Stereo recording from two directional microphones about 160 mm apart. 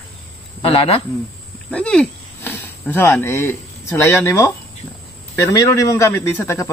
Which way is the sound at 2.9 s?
15° left (ahead or behind).